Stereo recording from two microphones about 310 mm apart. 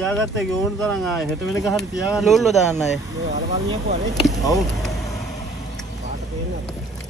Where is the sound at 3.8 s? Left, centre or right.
Right.